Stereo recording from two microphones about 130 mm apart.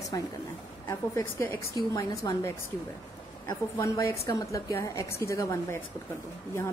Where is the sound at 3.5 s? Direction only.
30° left (ahead or behind).